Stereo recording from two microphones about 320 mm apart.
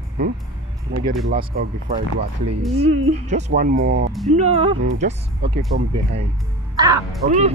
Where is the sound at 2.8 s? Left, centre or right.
Centre.